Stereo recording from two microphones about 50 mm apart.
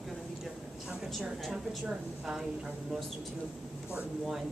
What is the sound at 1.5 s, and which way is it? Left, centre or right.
Speech, centre.